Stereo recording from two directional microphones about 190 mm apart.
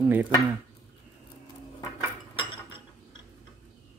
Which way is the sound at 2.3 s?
25° left (ahead or behind).